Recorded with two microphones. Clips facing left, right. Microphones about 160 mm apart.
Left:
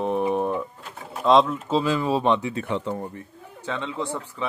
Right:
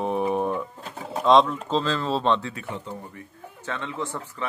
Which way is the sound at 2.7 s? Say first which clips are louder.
Left 10 dB; 90° left.